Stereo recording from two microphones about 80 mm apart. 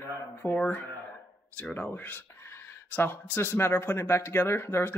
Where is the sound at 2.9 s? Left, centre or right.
Left.